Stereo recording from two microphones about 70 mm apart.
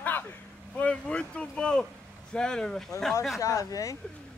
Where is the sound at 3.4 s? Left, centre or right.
Left.